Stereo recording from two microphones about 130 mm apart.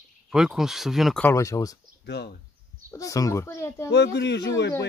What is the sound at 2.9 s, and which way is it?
A child's voice, 25° left (ahead or behind).